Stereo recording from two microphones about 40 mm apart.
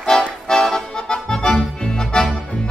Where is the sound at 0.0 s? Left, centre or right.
Centre.